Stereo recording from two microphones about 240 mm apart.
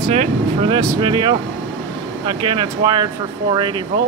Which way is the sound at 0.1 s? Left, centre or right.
Right.